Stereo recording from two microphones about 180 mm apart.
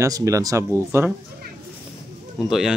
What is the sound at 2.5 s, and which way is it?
Speech, centre (ahead or behind).